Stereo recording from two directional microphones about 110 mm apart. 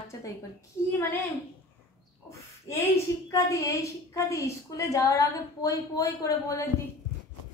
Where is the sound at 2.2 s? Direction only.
25° left (ahead or behind).